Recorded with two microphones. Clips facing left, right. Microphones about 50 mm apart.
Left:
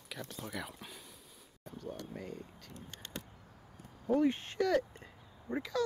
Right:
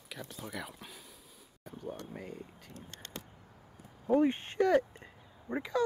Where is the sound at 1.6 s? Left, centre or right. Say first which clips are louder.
Right 1 dB; centre.